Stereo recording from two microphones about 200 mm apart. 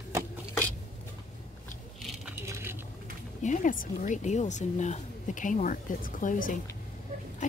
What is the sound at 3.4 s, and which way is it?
Speech, 40° left (ahead or behind).